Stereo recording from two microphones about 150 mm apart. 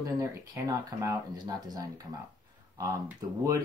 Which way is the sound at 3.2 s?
25° right (ahead or behind).